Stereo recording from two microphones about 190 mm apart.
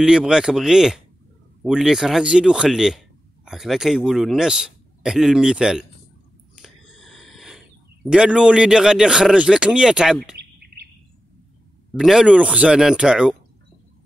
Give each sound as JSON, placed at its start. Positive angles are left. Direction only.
{"t": 0.0, "sound": "speech", "side_deg": -5}
{"t": 6.5, "sound": "a sound", "side_deg": 0}
{"t": 8.1, "sound": "speech", "side_deg": -5}
{"t": 11.9, "sound": "speech", "side_deg": 0}